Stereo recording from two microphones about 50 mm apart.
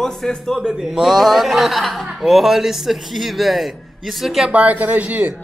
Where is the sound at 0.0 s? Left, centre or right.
Centre.